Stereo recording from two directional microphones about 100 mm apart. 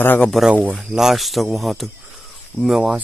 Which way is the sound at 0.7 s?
5° right (ahead or behind).